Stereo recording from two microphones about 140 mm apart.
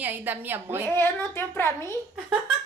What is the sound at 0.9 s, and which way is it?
Speech, 15° left (ahead or behind).